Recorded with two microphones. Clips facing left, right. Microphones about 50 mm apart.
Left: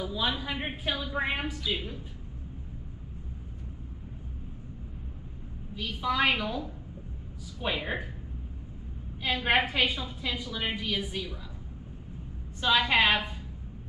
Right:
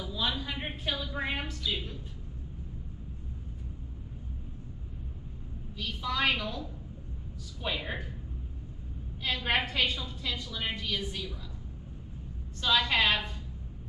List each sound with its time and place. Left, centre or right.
0.0 s a woman's voice: centre
5.8 s a woman's voice: centre
9.2 s a woman's voice: centre
12.5 s a woman's voice: centre